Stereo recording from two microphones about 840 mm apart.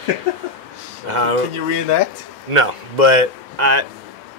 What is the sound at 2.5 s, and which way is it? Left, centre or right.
A man's voice, right.